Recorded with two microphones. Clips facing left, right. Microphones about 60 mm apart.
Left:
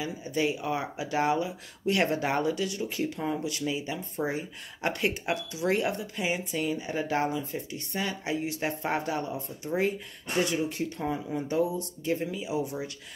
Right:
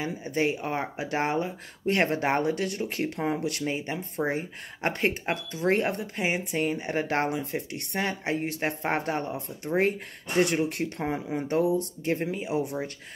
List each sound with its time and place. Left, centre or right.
0.0 s speech: right